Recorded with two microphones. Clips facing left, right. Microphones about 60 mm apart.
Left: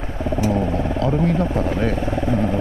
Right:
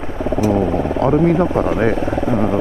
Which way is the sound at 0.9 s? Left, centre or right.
Right.